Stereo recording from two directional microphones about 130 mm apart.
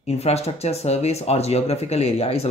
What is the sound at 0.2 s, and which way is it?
Speech, 55° left (ahead or behind).